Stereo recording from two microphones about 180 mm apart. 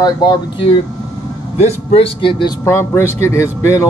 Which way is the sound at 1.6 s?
35° left (ahead or behind).